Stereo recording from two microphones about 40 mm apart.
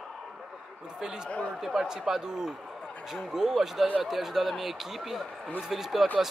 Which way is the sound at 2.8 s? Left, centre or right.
Left.